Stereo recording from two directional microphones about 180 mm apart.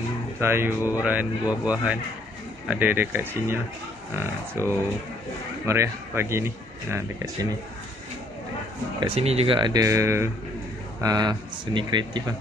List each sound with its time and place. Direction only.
0.4 s speech: 15° right (ahead or behind)
9.0 s speech: 35° right (ahead or behind)